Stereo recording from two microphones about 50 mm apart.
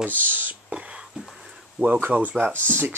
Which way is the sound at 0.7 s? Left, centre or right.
Right.